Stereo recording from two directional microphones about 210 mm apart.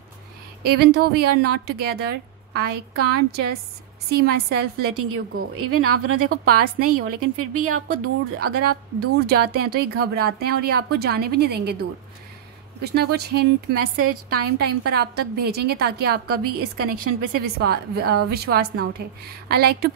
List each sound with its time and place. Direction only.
0.7 s a woman's voice: 50° right (ahead or behind)
5.0 s a woman's voice: 90° right
6.2 s a woman's voice: 45° right (ahead or behind)
7.3 s a woman's voice: 90° right
9.2 s a woman's voice: 50° right (ahead or behind)
12.8 s a woman's voice: 50° right (ahead or behind)